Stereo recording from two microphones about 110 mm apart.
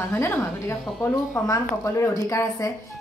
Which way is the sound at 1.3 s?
25° left (ahead or behind).